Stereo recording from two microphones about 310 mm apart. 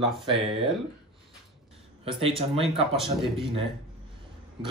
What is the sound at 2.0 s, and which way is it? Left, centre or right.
Speech, centre.